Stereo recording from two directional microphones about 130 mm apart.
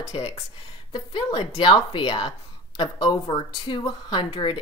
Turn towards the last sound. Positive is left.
turn(degrees=40)  # may be behind; listen again after turning